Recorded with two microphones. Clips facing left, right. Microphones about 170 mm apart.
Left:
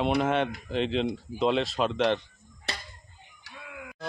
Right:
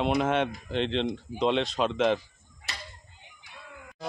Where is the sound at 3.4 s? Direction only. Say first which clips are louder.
Left 4 dB; 85° left.